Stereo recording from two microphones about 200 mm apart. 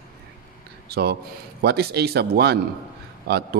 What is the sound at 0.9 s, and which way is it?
A man's voice, 55° right (ahead or behind).